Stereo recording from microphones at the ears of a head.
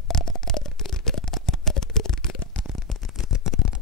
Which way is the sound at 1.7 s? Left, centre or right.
Left.